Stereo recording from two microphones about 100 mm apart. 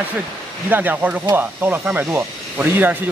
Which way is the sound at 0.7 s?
20° right (ahead or behind).